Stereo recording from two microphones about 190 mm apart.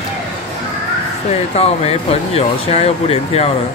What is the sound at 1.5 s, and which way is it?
Speech, 35° left (ahead or behind).